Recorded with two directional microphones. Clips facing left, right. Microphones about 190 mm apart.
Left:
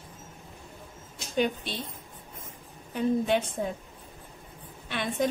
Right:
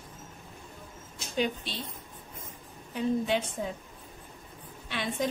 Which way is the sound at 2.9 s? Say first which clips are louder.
Left 3 dB; 55° left (ahead or behind).